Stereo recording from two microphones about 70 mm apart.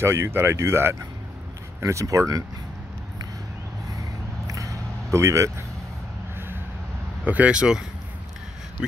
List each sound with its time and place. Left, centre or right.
0.0 s speech: right
4.5 s a sound: right
7.2 s speech: right